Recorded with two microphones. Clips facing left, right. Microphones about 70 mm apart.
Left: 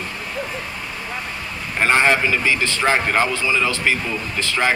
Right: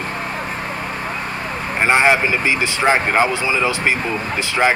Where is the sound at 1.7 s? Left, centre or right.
Centre.